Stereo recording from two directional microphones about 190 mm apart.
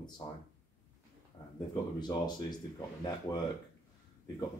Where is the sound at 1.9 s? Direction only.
20° left (ahead or behind).